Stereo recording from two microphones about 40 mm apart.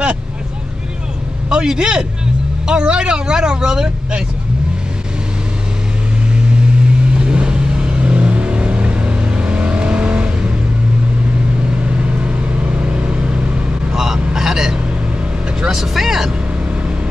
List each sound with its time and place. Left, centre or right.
1.5 s a man's voice: centre
7.2 s vehicle: right
11.8 s vehicle: right
13.9 s vehicle: centre